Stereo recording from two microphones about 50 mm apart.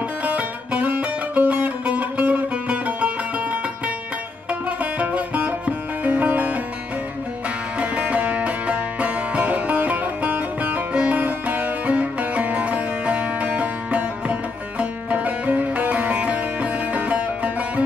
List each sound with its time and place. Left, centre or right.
0.2 s music: right
4.5 s music: right
7.8 s music: right